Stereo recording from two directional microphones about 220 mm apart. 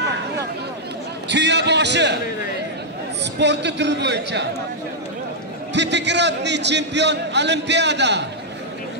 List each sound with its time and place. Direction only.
1.3 s a man's voice: 50° right (ahead or behind)
3.3 s a man's voice: 50° right (ahead or behind)
5.7 s a man's voice: 50° right (ahead or behind)